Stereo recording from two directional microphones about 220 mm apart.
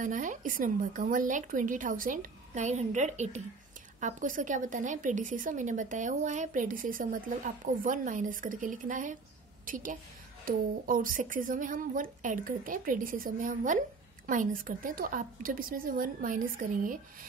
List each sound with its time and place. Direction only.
0.0 s a woman's voice: 35° right (ahead or behind)